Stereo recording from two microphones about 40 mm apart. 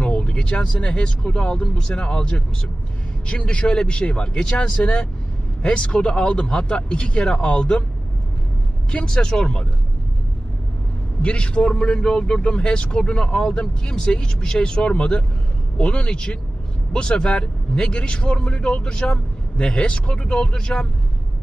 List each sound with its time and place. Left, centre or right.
0.0 s a man's voice: left
9.2 s a man's voice: left
11.2 s a man's voice: left